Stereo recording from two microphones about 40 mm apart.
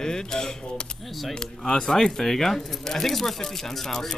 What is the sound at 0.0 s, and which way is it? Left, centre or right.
Speech, centre.